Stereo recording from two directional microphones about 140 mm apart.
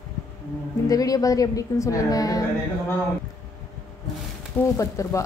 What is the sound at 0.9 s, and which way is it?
A woman's voice, 25° left (ahead or behind).